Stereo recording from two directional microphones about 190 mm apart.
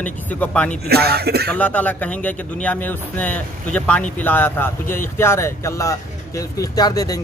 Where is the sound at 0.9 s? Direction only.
55° right (ahead or behind).